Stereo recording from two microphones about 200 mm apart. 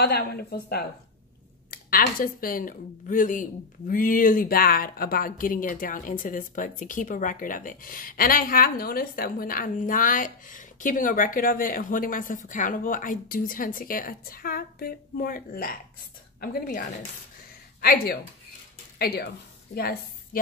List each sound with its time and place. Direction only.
0.0 s speech: 50° left (ahead or behind)